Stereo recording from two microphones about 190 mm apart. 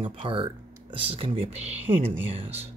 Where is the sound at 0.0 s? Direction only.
25° right (ahead or behind).